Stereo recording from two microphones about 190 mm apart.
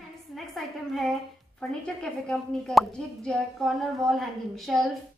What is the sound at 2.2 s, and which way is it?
Speech, centre (ahead or behind).